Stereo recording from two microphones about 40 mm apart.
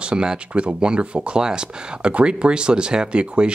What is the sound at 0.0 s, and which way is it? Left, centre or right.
Speech, right.